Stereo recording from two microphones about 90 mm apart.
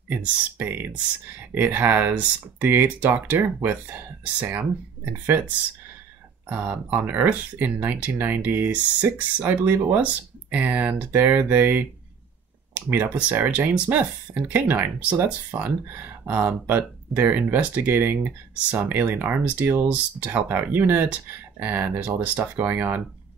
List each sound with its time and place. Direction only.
0.1 s speech: 20° right (ahead or behind)
6.5 s speech: 20° right (ahead or behind)